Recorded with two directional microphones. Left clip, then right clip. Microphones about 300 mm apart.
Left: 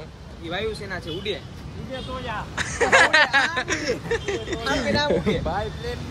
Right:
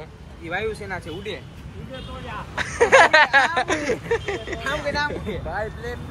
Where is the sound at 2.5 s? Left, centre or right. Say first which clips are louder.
Right 3 dB; centre.